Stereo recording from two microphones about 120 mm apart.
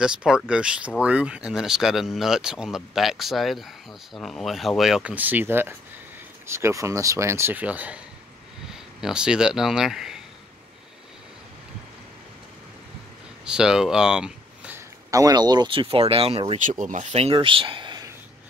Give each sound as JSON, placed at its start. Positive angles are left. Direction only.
{"t": 0.0, "sound": "speech", "side_deg": -5}
{"t": 9.0, "sound": "speech", "side_deg": -5}
{"t": 13.5, "sound": "speech", "side_deg": -5}
{"t": 15.0, "sound": "speech", "side_deg": -30}
{"t": 16.5, "sound": "speech", "side_deg": -90}